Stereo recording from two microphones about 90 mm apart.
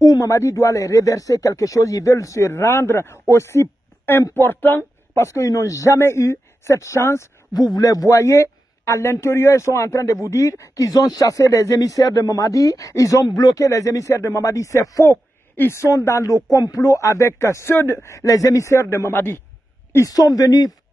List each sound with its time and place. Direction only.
0.0 s speech: 45° left (ahead or behind)
7.5 s speech: 45° left (ahead or behind)
15.0 s speech: 25° left (ahead or behind)
20.1 s speech: 45° left (ahead or behind)